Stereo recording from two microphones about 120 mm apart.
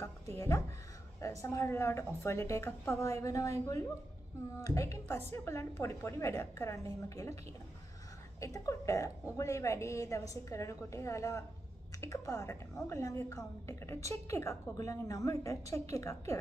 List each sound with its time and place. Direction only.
0.0 s a woman's voice: 20° left (ahead or behind)
8.4 s a woman's voice: 25° left (ahead or behind)